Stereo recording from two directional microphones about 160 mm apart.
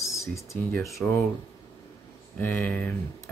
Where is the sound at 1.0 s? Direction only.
5° left (ahead or behind).